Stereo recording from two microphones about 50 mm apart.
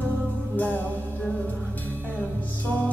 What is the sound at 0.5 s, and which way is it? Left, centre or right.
Music, left.